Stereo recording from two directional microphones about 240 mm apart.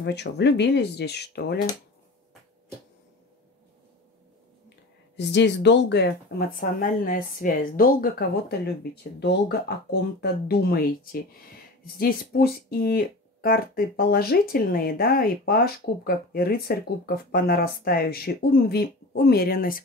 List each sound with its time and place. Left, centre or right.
0.0 s speech: left
5.1 s speech: left